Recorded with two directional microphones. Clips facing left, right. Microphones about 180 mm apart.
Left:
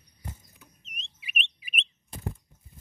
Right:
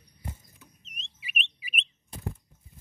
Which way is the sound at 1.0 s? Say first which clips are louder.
Even; centre (ahead or behind).